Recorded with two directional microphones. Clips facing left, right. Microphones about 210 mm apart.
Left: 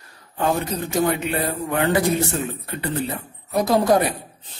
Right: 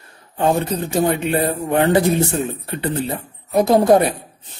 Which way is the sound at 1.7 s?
25° right (ahead or behind).